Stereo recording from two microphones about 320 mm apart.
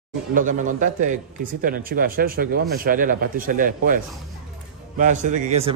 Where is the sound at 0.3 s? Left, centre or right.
Right.